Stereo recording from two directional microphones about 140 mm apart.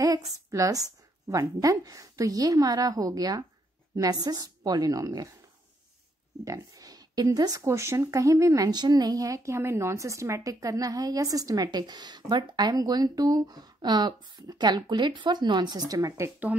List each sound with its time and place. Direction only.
0.0 s a woman's voice: 25° right (ahead or behind)
6.4 s speech: 25° right (ahead or behind)